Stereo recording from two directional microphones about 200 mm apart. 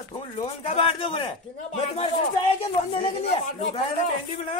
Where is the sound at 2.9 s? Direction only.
35° left (ahead or behind).